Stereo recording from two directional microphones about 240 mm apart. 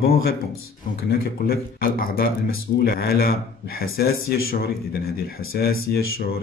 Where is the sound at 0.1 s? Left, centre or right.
Left.